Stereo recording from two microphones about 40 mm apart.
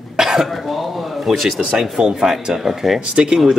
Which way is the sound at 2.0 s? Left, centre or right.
Centre.